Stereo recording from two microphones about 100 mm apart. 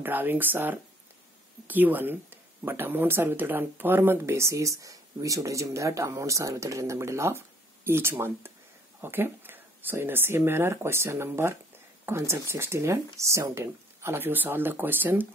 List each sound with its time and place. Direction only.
0.0 s speech: 20° right (ahead or behind)